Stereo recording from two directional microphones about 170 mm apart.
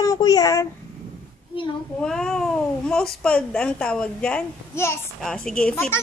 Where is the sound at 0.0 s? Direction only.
20° left (ahead or behind).